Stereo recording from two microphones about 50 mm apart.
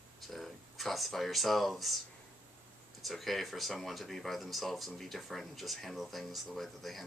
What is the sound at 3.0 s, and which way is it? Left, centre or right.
Speech, centre.